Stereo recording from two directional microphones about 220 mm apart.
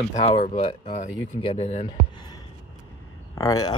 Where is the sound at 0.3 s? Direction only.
25° left (ahead or behind).